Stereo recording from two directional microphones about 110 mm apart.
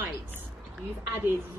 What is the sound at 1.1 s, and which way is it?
Speech, 20° right (ahead or behind).